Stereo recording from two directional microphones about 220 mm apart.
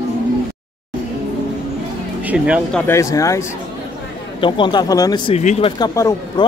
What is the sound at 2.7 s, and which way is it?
Speech, 10° left (ahead or behind).